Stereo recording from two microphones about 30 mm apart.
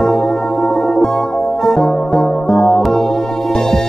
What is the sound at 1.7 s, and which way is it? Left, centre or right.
Music, centre.